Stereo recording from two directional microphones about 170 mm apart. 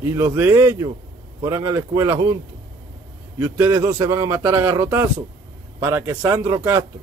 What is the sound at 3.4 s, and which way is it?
Speech, 15° right (ahead or behind).